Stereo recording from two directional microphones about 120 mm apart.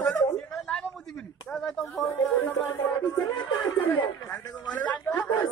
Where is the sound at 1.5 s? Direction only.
5° left (ahead or behind).